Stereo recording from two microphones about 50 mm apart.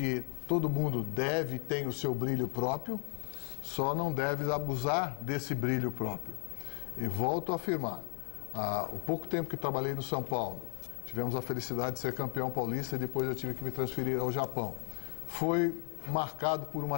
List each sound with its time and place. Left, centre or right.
0.0 s a man's voice: centre